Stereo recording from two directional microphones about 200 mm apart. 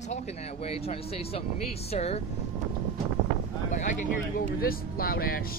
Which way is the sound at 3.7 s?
40° left (ahead or behind).